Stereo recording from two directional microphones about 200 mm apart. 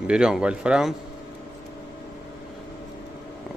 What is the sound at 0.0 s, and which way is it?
Speech, 5° right (ahead or behind).